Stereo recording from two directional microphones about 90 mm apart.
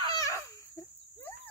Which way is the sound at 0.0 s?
40° left (ahead or behind).